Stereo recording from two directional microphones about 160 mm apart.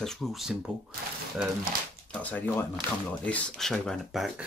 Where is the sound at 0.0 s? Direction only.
Centre (ahead or behind).